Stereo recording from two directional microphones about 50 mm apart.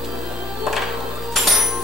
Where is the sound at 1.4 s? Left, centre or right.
Centre.